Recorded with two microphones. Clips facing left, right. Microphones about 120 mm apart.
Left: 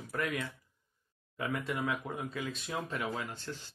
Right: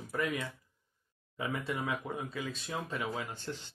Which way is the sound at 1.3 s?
15° right (ahead or behind).